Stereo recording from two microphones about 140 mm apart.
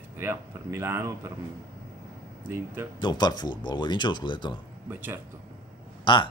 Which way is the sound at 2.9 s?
30° left (ahead or behind).